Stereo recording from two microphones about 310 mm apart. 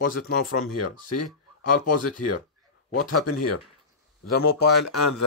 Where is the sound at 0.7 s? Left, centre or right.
Left.